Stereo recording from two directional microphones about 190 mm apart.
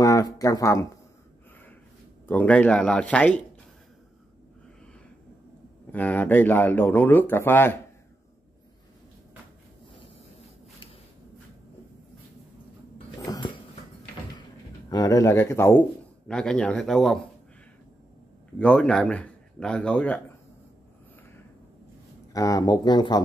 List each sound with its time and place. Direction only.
0.0 s speech: 15° left (ahead or behind)
2.2 s speech: 10° left (ahead or behind)
5.9 s speech: 10° left (ahead or behind)
13.3 s dog: 20° left (ahead or behind)
14.9 s speech: 20° left (ahead or behind); by 17.2 s centre (ahead or behind)
18.6 s speech: 5° left (ahead or behind)
22.3 s speech: 15° left (ahead or behind)